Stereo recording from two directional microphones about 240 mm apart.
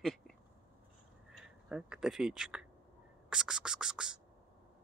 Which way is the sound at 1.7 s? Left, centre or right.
Centre.